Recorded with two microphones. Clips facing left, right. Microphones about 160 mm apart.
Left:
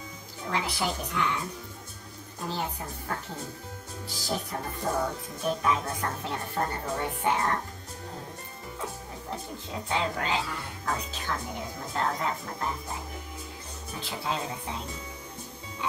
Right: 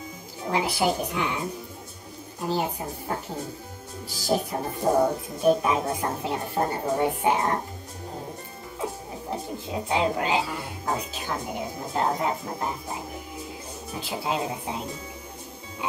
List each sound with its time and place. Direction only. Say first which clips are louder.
0.5 s a woman's voice: right 6 dB; 10° right (ahead or behind)
2.5 s a woman's voice: right 7 dB; 15° right (ahead or behind)
5.4 s a woman's voice: right 6 dB; 15° right (ahead or behind)
8.7 s a woman's voice: right 6 dB; 15° right (ahead or behind)